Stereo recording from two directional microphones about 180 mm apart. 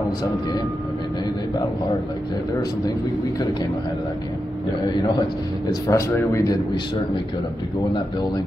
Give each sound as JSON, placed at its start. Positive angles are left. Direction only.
{"t": 5.7, "sound": "speech", "side_deg": 15}